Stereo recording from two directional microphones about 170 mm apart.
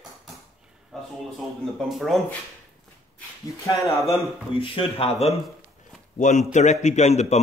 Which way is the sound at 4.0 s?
Centre (ahead or behind).